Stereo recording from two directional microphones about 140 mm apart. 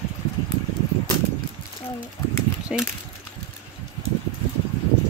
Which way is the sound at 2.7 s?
5° right (ahead or behind).